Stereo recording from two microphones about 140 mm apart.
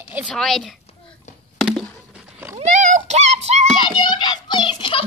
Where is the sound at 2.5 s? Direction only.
60° right (ahead or behind).